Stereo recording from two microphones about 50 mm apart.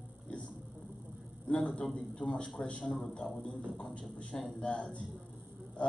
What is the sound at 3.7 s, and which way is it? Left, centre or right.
Speech, left.